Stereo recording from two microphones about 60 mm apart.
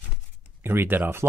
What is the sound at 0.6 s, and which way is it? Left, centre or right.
Speech, right.